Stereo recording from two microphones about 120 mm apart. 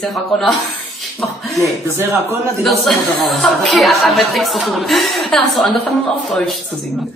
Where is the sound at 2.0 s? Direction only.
20° right (ahead or behind).